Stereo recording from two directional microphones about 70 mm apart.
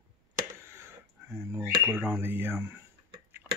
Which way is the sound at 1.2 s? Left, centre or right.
Right.